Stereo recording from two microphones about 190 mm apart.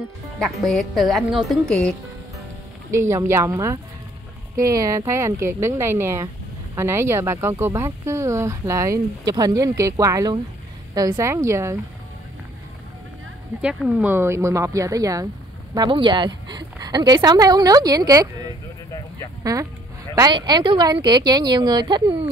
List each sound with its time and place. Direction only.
0.4 s speech: centre (ahead or behind)
3.0 s a woman's voice: 15° right (ahead or behind)
13.6 s a woman's voice: 5° right (ahead or behind); by 22.2 s 25° right (ahead or behind)